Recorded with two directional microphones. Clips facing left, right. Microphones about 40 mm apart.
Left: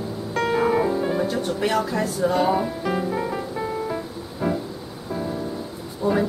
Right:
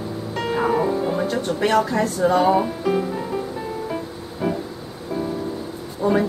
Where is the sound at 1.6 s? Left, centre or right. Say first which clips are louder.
Right 5 dB; centre.